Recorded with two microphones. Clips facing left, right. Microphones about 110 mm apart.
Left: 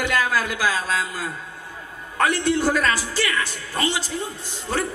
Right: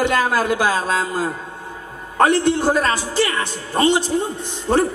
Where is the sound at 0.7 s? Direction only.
40° right (ahead or behind); by 4.2 s 25° right (ahead or behind).